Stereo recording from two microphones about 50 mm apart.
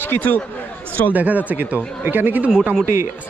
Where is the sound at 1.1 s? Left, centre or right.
Right.